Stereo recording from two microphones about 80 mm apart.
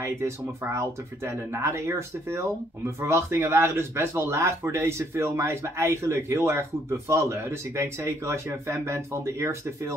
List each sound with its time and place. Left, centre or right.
0.0 s speech: right